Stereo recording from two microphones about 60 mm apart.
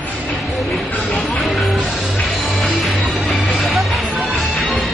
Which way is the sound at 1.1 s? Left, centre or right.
Centre.